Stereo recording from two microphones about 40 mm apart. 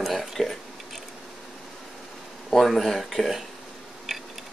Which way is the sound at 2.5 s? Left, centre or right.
Centre.